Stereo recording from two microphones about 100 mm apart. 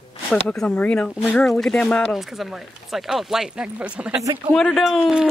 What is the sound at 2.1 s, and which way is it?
Speech, centre (ahead or behind).